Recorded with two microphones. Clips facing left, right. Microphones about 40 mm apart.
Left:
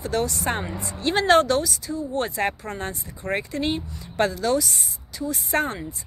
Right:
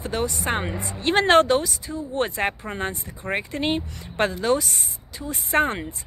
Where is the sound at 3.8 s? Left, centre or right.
Right.